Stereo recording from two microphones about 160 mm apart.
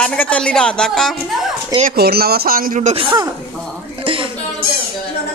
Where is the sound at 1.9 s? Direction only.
75° right (ahead or behind).